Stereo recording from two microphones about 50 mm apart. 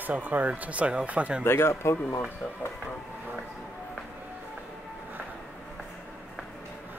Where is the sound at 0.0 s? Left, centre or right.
Right.